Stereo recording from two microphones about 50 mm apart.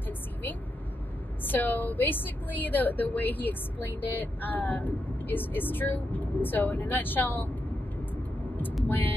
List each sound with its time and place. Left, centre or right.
1.5 s a woman's voice: left
8.8 s speech: left